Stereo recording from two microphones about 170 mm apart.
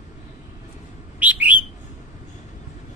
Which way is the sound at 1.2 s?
10° right (ahead or behind).